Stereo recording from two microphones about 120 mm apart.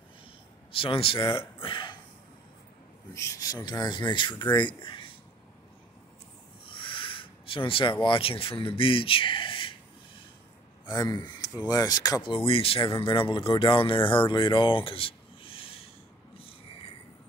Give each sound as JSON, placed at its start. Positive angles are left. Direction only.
{"t": 0.7, "sound": "speech", "side_deg": 50}
{"t": 1.6, "sound": "burping", "side_deg": 45}
{"t": 3.2, "sound": "speech", "side_deg": 25}
{"t": 6.7, "sound": "speech", "side_deg": 45}
{"t": 10.9, "sound": "speech", "side_deg": 35}
{"t": 12.2, "sound": "speech", "side_deg": 50}